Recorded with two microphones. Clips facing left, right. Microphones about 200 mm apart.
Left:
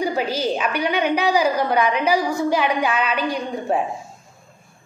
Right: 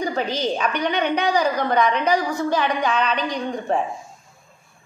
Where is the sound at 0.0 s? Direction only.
10° left (ahead or behind).